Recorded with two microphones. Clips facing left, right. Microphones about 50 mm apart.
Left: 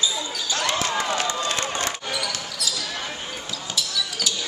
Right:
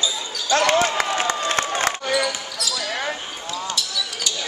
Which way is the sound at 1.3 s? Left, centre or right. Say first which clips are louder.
Right 3 dB; right.